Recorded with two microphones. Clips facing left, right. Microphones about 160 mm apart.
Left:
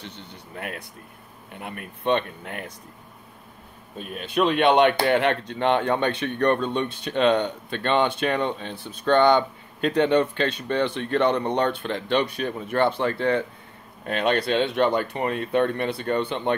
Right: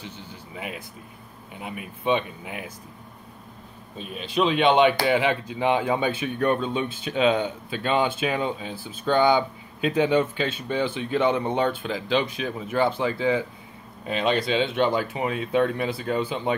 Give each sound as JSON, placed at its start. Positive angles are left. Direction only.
{"t": 0.1, "sound": "speech", "side_deg": 65}
{"t": 1.5, "sound": "speech", "side_deg": 0}
{"t": 4.4, "sound": "speech", "side_deg": 0}